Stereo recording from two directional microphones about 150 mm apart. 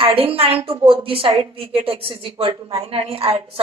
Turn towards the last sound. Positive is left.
turn(degrees=-40)  # may be behind; listen again after turning